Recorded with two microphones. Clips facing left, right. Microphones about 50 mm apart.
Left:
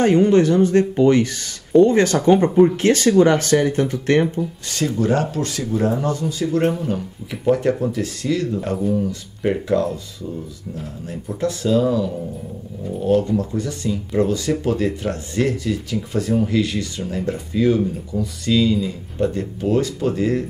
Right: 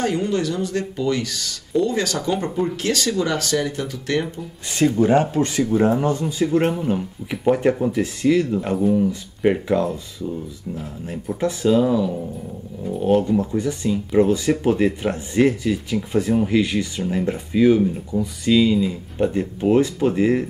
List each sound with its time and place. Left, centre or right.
0.0 s speech: left
4.7 s speech: centre
8.7 s speech: centre
9.0 s speech: centre
11.4 s speech: centre
13.6 s speech: centre